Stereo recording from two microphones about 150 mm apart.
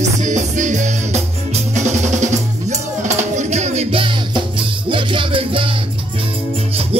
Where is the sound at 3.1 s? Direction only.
50° right (ahead or behind).